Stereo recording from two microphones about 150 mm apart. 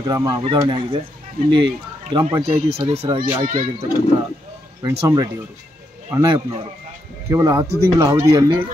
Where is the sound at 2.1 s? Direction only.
30° right (ahead or behind).